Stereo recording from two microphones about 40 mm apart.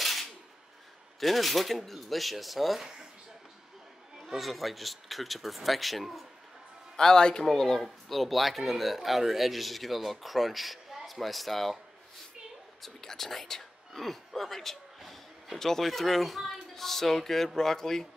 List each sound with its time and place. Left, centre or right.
0.0 s a sound: centre
1.2 s speech: centre
2.8 s speech: centre
4.3 s speech: centre
7.0 s a man's voice: centre
12.8 s speech: centre